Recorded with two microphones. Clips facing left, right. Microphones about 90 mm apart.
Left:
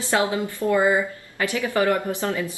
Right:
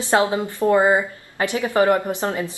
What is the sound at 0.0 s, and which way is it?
A woman's voice, 20° right (ahead or behind).